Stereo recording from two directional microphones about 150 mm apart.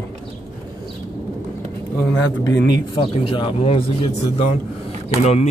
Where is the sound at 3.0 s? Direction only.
35° left (ahead or behind).